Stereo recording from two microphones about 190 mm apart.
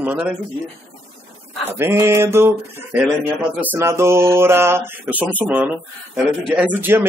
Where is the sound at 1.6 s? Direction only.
15° right (ahead or behind).